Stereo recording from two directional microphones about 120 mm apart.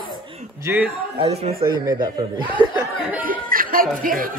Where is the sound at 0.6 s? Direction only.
15° right (ahead or behind).